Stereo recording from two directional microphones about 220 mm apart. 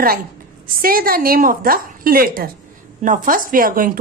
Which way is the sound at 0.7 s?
40° right (ahead or behind).